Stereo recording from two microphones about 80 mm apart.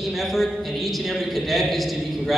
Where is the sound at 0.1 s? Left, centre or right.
Centre.